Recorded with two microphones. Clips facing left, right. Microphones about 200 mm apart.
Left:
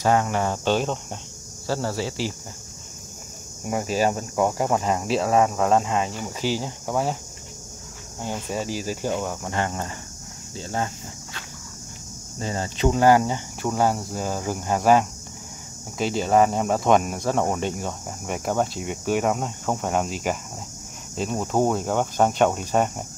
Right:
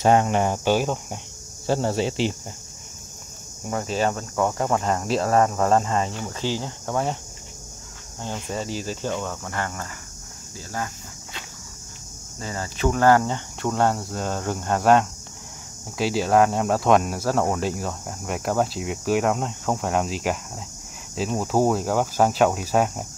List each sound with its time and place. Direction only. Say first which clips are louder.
0.0 s speech: right 3 dB; 20° right (ahead or behind)
1.7 s speech: right 4 dB; 20° right (ahead or behind)
3.6 s speech: left 1 dB; 10° left (ahead or behind)
8.2 s speech: left 1 dB; 10° left (ahead or behind)
12.4 s speech: left 2 dB; 25° left (ahead or behind); by 23.0 s 5° right (ahead or behind)